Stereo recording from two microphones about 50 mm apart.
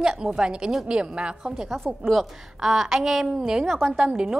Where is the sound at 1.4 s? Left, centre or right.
Centre.